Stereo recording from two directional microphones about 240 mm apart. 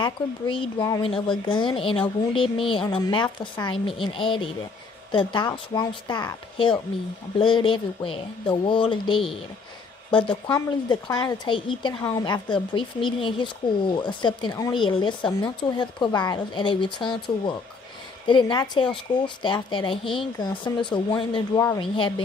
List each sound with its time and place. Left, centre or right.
0.0 s speech: left